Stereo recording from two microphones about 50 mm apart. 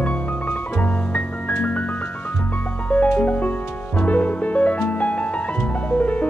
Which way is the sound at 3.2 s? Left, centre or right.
Left.